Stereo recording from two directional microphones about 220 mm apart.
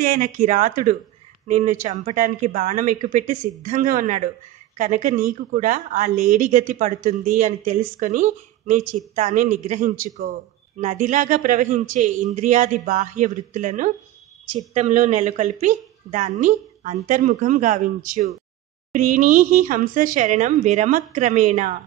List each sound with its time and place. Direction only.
0.0 s speech: 40° right (ahead or behind)